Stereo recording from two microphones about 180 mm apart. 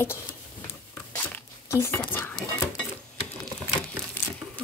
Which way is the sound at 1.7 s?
15° left (ahead or behind).